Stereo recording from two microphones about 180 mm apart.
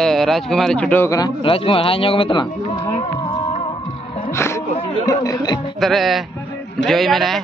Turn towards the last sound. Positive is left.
turn(degrees=0)  # may be behind; listen again after turning